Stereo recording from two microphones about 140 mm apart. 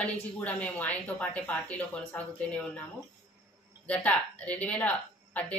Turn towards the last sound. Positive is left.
turn(degrees=10)  # may be behind; listen again after turning